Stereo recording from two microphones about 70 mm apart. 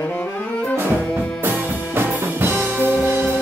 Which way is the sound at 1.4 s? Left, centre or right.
Right.